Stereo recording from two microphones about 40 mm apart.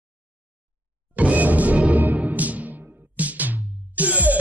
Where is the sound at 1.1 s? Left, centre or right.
Right.